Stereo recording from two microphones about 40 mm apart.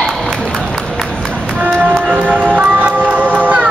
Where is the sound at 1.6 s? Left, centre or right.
Right.